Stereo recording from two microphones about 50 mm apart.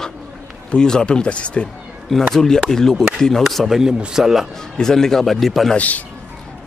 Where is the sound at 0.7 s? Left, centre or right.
Centre.